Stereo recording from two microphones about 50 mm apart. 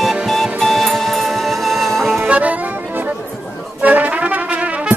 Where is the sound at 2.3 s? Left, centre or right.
Right.